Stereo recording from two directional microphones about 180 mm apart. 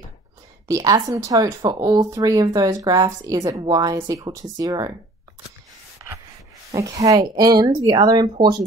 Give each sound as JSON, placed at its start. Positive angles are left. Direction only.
{"t": 0.7, "sound": "speech", "side_deg": -20}
{"t": 6.7, "sound": "speech", "side_deg": -20}